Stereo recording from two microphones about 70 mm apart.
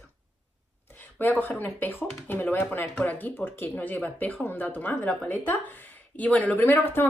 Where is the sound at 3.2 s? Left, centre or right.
Left.